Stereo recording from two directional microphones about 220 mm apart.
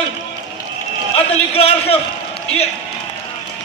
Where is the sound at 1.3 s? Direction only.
25° left (ahead or behind).